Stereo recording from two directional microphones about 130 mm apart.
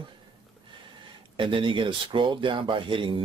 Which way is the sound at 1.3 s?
40° right (ahead or behind).